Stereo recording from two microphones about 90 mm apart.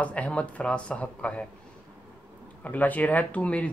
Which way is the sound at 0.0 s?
15° left (ahead or behind).